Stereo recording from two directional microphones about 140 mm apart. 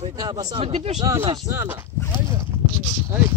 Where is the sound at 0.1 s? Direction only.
25° right (ahead or behind).